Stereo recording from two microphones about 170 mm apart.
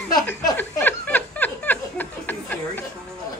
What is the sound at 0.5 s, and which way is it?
Chuckle, 10° left (ahead or behind).